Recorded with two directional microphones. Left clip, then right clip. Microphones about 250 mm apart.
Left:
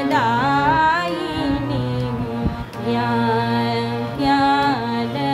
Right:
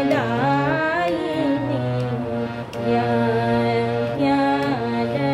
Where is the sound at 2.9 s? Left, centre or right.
Left.